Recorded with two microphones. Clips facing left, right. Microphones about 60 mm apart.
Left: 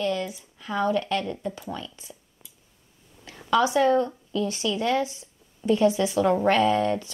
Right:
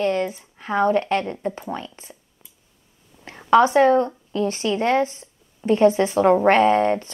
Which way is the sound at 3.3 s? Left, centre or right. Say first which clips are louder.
Right 7 dB; right.